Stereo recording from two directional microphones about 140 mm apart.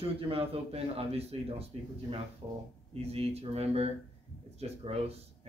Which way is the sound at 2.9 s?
45° right (ahead or behind).